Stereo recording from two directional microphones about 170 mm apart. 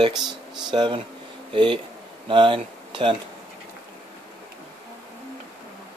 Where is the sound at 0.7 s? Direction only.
25° right (ahead or behind).